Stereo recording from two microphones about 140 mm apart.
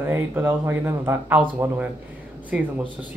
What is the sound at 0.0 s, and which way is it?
Speech, 15° right (ahead or behind).